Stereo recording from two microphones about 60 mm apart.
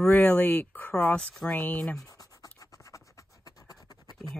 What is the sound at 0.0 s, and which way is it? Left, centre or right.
Speech, left.